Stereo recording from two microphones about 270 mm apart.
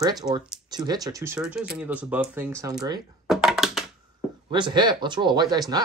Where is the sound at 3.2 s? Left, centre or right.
Centre.